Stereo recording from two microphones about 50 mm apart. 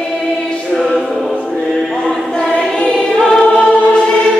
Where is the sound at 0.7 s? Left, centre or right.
Centre.